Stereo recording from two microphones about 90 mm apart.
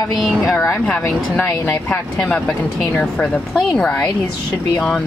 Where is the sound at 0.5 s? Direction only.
35° left (ahead or behind).